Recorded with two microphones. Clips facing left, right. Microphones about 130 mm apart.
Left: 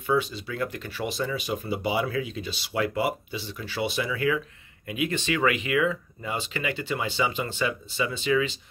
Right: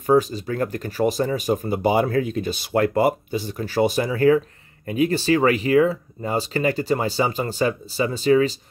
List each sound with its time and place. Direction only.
0.0 s speech: 40° right (ahead or behind)